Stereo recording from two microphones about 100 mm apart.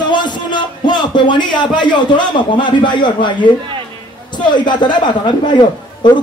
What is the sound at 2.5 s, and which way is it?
A man's voice, 50° left (ahead or behind).